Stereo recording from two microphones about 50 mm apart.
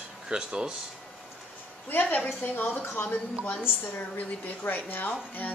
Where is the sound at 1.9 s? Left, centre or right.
Left.